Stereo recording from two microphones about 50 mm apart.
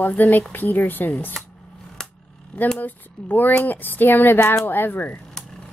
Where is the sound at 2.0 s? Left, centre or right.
Centre.